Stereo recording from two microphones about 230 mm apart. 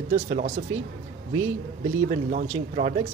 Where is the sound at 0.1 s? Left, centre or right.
Right.